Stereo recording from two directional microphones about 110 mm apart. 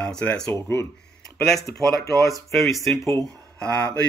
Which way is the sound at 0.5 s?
25° left (ahead or behind).